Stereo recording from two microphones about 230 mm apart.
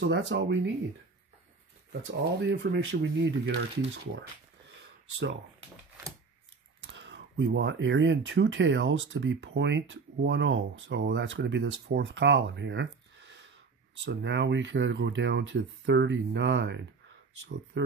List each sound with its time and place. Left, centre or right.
0.0 s speech: right
1.9 s speech: right
6.8 s speech: right